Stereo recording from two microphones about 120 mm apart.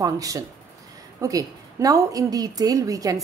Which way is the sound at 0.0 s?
30° right (ahead or behind).